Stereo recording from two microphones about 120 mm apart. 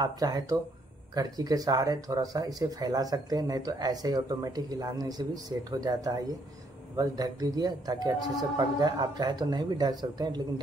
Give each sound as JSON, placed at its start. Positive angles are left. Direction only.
{"t": 0.0, "sound": "speech", "side_deg": -30}